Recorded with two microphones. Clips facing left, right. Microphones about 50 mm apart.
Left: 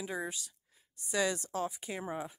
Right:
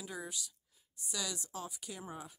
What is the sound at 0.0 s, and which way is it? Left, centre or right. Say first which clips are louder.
Speech: left 6 dB; left.